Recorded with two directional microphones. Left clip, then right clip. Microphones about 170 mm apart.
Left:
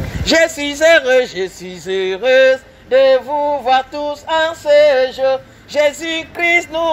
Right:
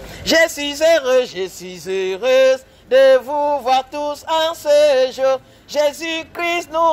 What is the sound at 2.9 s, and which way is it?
Male singing, 45° right (ahead or behind).